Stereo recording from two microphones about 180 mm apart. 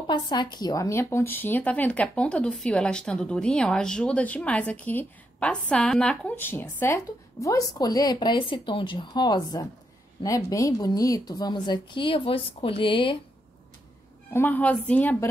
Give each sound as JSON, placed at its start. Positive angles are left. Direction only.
{"t": 0.0, "sound": "a woman's voice", "side_deg": 25}
{"t": 14.3, "sound": "speech", "side_deg": 10}